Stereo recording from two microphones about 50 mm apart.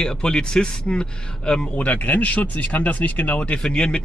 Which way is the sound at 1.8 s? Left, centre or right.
Left.